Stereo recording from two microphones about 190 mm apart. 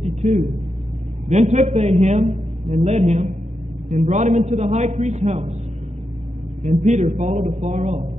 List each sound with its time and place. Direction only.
0.0 s a sound: 35° right (ahead or behind)
1.3 s a man's voice: 40° right (ahead or behind)
7.0 s a man's voice: 40° right (ahead or behind)